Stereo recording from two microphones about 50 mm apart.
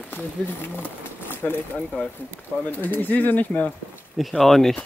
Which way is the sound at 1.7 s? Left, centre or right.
Centre.